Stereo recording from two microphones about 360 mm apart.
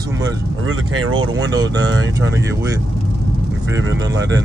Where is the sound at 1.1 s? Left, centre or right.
Centre.